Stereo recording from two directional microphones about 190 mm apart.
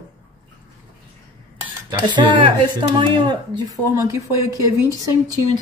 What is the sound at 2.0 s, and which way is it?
Speech, 25° right (ahead or behind).